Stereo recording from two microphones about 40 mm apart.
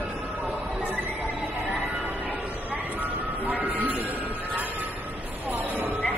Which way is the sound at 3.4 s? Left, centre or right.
Right.